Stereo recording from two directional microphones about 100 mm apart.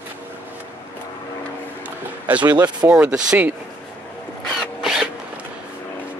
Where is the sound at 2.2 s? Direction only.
15° right (ahead or behind).